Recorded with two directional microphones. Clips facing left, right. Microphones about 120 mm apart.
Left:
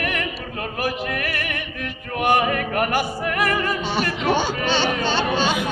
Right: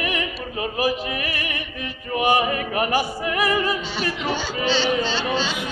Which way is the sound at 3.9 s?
50° left (ahead or behind).